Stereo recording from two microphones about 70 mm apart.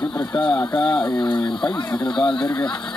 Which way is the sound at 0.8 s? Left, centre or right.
Centre.